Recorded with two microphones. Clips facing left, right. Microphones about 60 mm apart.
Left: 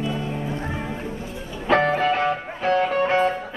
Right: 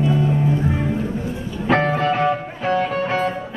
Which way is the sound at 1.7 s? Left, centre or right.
Centre.